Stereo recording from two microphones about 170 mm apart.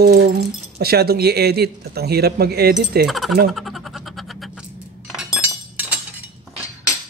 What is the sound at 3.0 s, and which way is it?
Speech, centre (ahead or behind).